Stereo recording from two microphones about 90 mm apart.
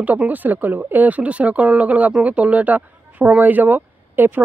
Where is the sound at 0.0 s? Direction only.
20° right (ahead or behind).